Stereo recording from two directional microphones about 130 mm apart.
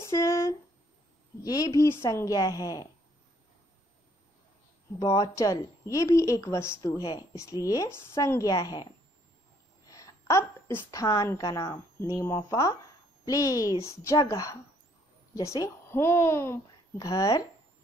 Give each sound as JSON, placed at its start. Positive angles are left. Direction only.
{"t": 0.0, "sound": "a sound", "side_deg": 25}
{"t": 1.4, "sound": "speech", "side_deg": 30}
{"t": 4.9, "sound": "speech", "side_deg": 25}
{"t": 9.8, "sound": "a woman's voice", "side_deg": 25}